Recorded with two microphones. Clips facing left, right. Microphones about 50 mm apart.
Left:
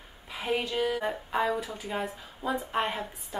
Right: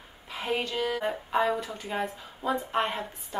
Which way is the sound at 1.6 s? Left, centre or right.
Centre.